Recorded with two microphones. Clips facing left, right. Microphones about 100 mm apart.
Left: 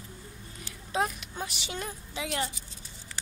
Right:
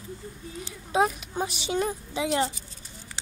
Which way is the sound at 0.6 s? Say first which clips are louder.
Right 6 dB; 20° right (ahead or behind).